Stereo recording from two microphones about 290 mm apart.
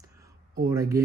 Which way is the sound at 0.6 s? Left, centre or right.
Centre.